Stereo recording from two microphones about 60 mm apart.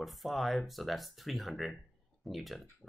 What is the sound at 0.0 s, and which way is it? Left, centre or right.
Speech, centre.